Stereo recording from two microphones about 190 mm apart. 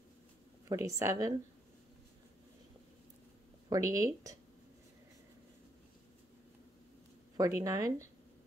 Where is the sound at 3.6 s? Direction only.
15° right (ahead or behind).